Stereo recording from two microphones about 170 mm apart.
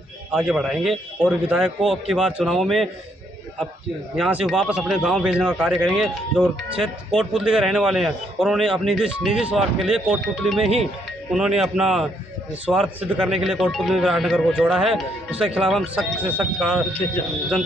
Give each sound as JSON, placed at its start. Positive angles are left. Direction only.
{"t": 0.3, "sound": "speech", "side_deg": 0}
{"t": 4.2, "sound": "speech", "side_deg": -5}